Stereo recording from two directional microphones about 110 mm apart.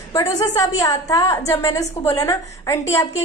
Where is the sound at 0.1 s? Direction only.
35° left (ahead or behind).